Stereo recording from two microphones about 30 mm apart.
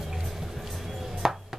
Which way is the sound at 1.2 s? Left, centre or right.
Centre.